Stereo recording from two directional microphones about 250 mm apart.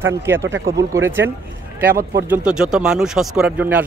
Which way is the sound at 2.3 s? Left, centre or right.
Centre.